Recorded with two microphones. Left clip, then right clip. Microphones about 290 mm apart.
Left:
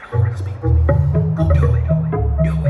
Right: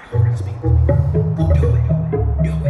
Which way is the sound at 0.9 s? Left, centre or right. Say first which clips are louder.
Even; left.